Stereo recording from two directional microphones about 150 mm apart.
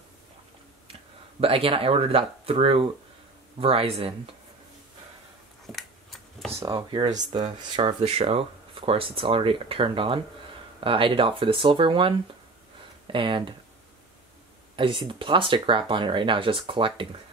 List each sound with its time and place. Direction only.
1.4 s speech: 40° right (ahead or behind)
5.7 s scissors: centre (ahead or behind)
6.5 s speech: 20° right (ahead or behind)
6.9 s speech: 30° right (ahead or behind)
14.8 s speech: 35° right (ahead or behind)